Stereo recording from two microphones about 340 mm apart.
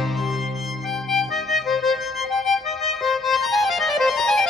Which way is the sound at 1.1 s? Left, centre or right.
Centre.